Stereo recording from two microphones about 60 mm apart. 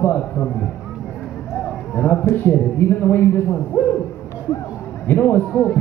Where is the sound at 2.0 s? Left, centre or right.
Left.